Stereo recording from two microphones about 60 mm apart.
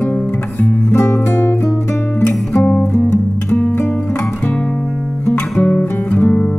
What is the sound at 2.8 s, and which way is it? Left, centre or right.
Guitar, left.